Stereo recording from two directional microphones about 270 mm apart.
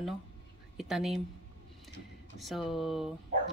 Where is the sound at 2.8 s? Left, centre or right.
Centre.